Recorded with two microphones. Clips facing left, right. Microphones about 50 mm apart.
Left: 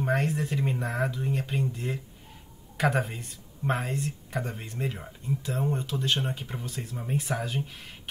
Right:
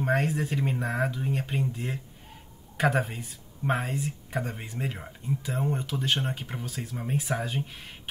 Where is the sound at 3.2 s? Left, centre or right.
Centre.